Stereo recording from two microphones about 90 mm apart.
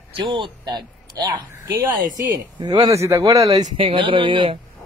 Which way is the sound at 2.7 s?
40° right (ahead or behind).